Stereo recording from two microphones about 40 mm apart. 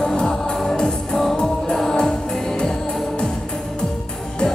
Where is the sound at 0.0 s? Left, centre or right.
Centre.